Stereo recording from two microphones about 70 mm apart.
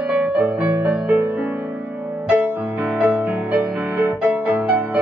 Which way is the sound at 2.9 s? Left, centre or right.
Right.